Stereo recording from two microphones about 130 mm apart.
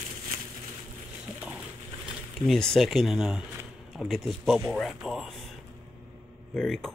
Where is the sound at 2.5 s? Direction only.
5° left (ahead or behind).